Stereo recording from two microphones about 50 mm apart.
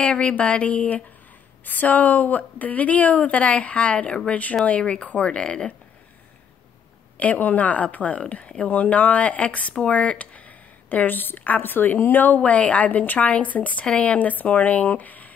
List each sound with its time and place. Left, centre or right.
0.0 s a woman's voice: left
7.2 s a woman's voice: left
13.8 s speech: centre
14.1 s a woman's voice: left